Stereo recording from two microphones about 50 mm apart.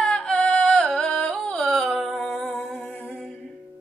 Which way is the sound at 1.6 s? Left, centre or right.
Centre.